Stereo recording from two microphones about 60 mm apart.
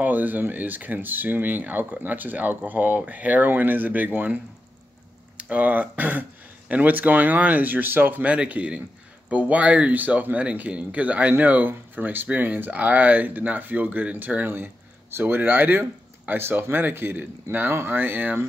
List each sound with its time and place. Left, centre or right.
0.0 s speech: right
5.4 s speech: right